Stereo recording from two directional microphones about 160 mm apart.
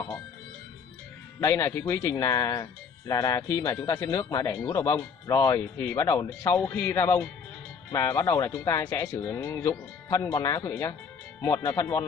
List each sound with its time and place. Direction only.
1.4 s speech: 20° left (ahead or behind)